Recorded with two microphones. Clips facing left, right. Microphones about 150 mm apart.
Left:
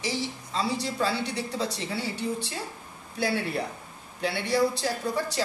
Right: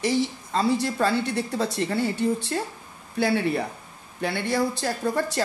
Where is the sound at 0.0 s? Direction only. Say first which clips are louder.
Right 7 dB; 55° right (ahead or behind).